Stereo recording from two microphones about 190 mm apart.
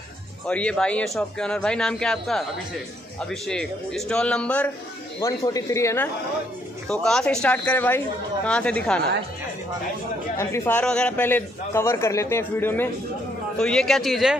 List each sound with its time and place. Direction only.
0.5 s a man's voice: 5° left (ahead or behind)
6.9 s a man's voice: 5° left (ahead or behind)
10.3 s a man's voice: 15° left (ahead or behind)